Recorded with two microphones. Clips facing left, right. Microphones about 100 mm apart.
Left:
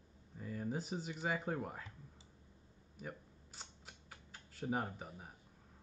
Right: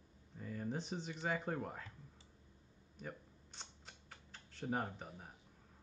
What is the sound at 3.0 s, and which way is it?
Camera, 5° left (ahead or behind).